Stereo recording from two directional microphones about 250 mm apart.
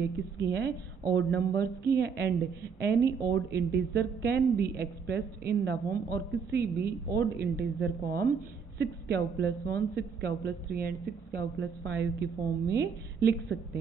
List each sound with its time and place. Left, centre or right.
0.5 s a woman's voice: right